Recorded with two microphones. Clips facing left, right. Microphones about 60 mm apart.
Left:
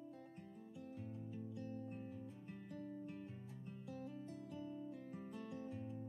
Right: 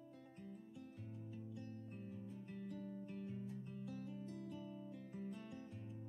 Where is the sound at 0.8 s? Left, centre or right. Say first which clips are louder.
Left 3 dB; centre.